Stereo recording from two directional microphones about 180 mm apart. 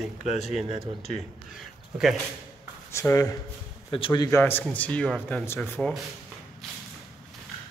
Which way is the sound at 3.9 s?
30° left (ahead or behind).